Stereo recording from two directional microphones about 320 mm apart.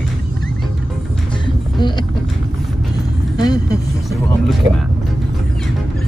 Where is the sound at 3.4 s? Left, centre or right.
Centre.